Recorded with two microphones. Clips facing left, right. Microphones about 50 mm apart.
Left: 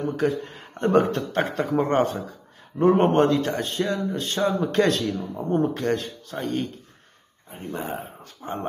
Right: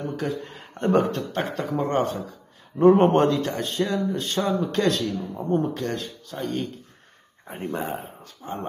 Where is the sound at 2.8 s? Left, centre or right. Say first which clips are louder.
Right 2 dB; centre.